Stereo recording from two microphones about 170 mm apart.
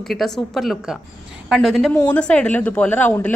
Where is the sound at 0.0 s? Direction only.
Centre (ahead or behind).